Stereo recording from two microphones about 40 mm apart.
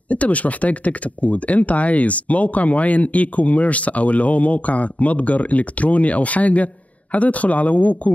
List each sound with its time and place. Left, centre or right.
0.1 s speech: left